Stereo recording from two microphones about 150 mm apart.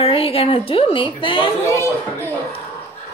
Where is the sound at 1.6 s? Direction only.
20° left (ahead or behind).